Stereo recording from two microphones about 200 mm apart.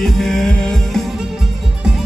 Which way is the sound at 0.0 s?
Centre (ahead or behind).